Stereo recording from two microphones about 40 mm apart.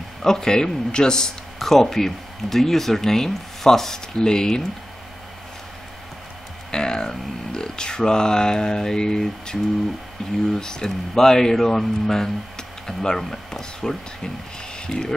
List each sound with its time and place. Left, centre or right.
0.2 s speech: centre
1.6 s speech: centre
6.7 s speech: centre